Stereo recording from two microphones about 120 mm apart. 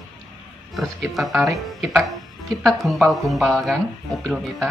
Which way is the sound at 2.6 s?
Centre (ahead or behind).